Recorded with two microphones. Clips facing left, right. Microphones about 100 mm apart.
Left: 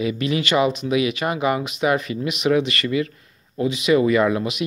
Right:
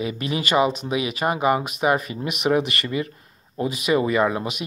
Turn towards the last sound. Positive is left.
turn(degrees=-35)  # may be behind; listen again after turning